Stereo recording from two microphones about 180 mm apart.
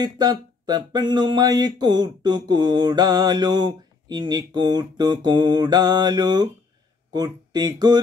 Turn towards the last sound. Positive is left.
turn(degrees=-25)  # may be behind; listen again after turning